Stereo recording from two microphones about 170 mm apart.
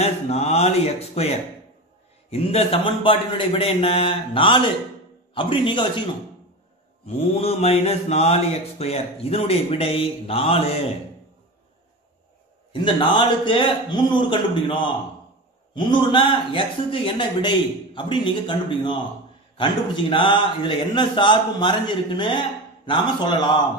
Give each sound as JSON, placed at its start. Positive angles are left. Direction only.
{"t": 0.0, "sound": "a man's voice", "side_deg": 40}
{"t": 7.1, "sound": "speech", "side_deg": 35}
{"t": 12.8, "sound": "a man's voice", "side_deg": 30}
{"t": 16.1, "sound": "a man's voice", "side_deg": 30}